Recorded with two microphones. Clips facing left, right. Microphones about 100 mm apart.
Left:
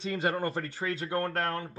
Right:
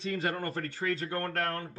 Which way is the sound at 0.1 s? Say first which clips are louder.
Left 4 dB; 30° left (ahead or behind).